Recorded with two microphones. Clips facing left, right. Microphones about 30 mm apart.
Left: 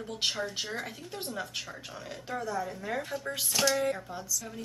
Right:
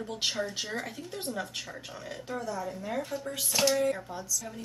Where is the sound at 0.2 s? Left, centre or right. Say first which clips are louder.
Left 1 dB; centre.